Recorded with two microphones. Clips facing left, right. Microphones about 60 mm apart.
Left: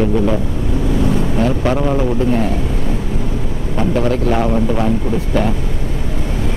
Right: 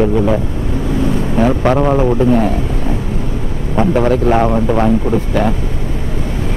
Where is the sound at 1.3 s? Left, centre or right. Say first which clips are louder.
Right 8 dB; right.